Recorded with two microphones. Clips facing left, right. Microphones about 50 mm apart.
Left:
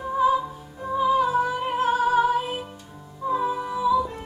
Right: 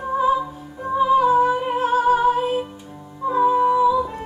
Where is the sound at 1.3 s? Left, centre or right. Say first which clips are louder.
Right 7 dB; right.